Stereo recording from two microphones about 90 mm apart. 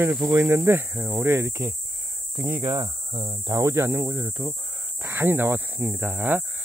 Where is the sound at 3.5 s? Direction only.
30° right (ahead or behind).